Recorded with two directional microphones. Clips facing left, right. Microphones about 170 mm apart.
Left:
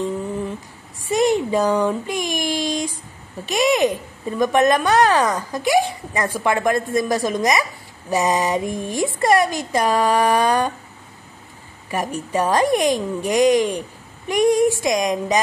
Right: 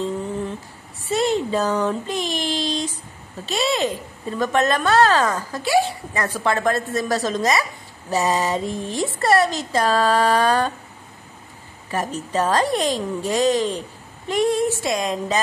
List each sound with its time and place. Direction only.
1.0 s speech: 15° left (ahead or behind)
11.9 s speech: 15° left (ahead or behind)